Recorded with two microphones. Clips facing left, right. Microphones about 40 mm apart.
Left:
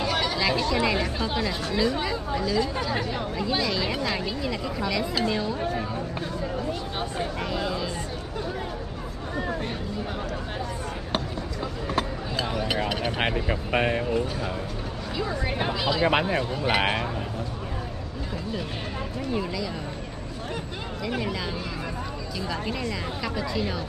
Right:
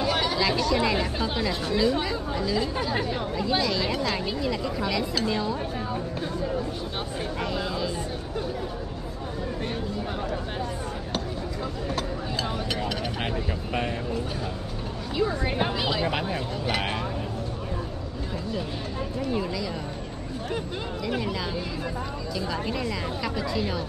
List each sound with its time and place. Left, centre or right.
0.0 s a sound: centre
0.7 s speech: centre
2.5 s speech: centre
3.3 s speech: centre
7.2 s a sound: centre
12.6 s vehicle: centre
13.2 s speech: left
15.4 s speech: centre
16.1 s speech: left
19.3 s speech: centre
21.0 s speech: centre
22.5 s speech: centre